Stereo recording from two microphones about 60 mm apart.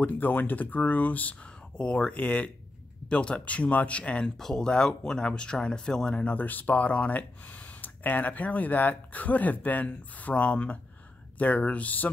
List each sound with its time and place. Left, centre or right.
0.0 s speech: left
4.4 s speech: centre
6.3 s speech: left